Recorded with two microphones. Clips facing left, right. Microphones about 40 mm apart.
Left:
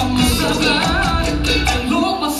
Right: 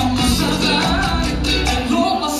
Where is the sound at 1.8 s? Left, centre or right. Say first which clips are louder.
Right 1 dB; centre.